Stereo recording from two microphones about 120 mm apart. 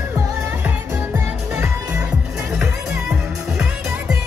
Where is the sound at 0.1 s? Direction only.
20° right (ahead or behind).